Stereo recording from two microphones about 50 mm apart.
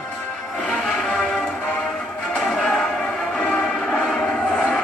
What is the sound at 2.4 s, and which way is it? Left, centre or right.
Music, centre.